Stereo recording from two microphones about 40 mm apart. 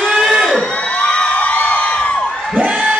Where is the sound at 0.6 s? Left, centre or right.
Left.